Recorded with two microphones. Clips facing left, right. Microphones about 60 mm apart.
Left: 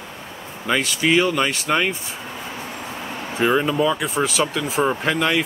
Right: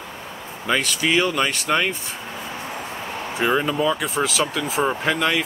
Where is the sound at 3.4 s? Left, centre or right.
Centre.